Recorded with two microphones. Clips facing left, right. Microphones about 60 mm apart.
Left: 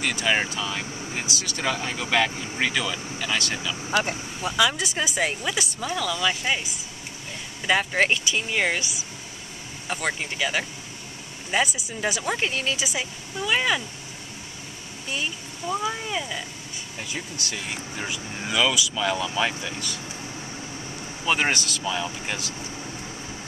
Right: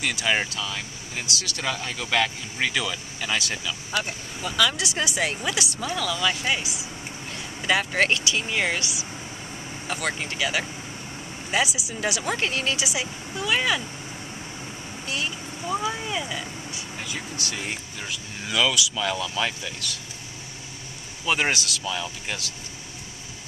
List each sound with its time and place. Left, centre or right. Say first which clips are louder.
0.0 s speech: left 1 dB; centre
3.9 s speech: left 4 dB; left
4.7 s speech: even; centre
15.7 s speech: even; centre
18.5 s speech: even; centre
21.3 s speech: left 1 dB; centre